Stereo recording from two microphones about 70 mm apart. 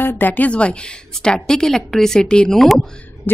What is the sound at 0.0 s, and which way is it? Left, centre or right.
A woman's voice, left.